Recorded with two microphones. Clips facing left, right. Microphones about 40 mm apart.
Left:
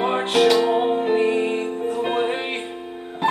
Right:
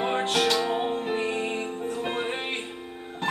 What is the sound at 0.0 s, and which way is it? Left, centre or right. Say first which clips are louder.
Music: left 6 dB; centre.